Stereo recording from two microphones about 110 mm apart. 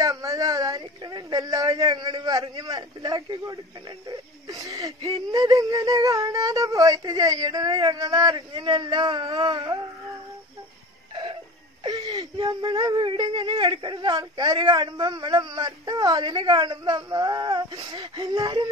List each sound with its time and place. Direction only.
0.0 s speech: 30° right (ahead or behind)
11.8 s whimper: 35° right (ahead or behind)
12.4 s speech: 45° right (ahead or behind)